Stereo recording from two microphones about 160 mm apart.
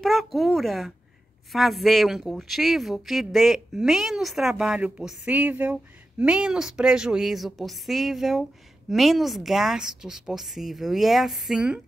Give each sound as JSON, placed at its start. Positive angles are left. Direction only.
{"t": 0.0, "sound": "speech", "side_deg": 0}